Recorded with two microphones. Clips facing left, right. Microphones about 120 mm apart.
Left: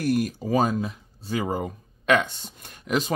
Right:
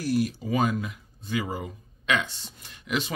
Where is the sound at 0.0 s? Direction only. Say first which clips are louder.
Left 2 dB; 50° left (ahead or behind).